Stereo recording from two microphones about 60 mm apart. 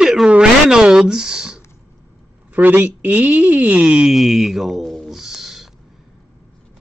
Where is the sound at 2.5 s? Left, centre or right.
Right.